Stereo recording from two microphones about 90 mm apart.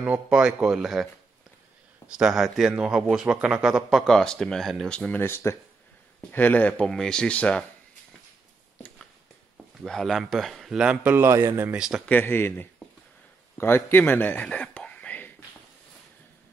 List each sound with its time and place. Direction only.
0.0 s speech: 10° right (ahead or behind)
2.0 s speech: 10° right (ahead or behind)
4.1 s speech: 5° left (ahead or behind)
5.2 s speech: 30° left (ahead or behind)
6.3 s speech: 20° left (ahead or behind)
6.9 s speech: 10° left (ahead or behind)
9.8 s a man's voice: 5° left (ahead or behind)
11.1 s a man's voice: 30° right (ahead or behind)
11.7 s speech: 10° right (ahead or behind)
12.1 s speech: 20° left (ahead or behind)